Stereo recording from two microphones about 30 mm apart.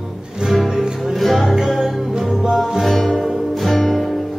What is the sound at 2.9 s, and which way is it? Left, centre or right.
Music, centre.